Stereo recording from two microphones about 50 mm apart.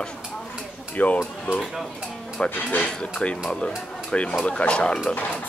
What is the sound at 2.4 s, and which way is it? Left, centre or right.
Speech, left.